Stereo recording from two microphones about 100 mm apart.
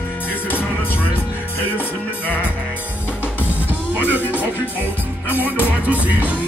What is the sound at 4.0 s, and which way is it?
Music, 15° right (ahead or behind).